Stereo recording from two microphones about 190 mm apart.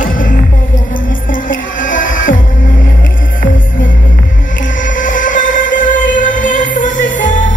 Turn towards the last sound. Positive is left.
turn(degrees=45)  # may be behind; listen again after turning